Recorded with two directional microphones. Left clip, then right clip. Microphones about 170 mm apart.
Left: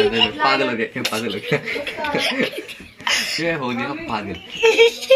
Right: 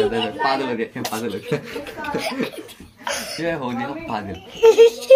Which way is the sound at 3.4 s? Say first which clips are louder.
Left 2 dB; 15° left (ahead or behind).